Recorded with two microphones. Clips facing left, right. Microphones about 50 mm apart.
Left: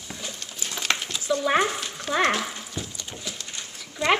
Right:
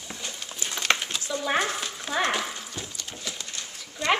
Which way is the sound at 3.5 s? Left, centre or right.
Centre.